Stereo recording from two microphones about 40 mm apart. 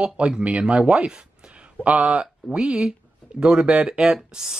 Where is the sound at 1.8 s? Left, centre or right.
Right.